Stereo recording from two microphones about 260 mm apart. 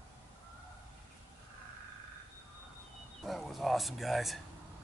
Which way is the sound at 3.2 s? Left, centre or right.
Centre.